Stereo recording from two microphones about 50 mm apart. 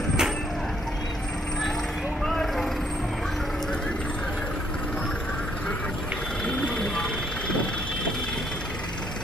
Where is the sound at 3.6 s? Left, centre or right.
Centre.